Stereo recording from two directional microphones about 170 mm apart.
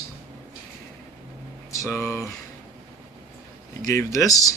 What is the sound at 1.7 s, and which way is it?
Speech, 15° left (ahead or behind).